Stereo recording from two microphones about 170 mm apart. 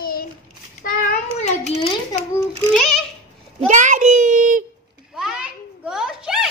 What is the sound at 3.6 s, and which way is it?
Child singing, 45° right (ahead or behind).